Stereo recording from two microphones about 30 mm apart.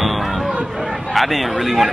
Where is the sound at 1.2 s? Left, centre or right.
Centre.